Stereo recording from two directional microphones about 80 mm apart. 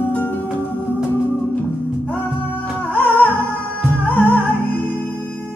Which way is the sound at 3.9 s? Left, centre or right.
Left.